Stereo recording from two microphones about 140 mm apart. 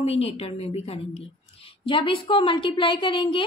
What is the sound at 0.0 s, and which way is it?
A woman's voice, 45° left (ahead or behind).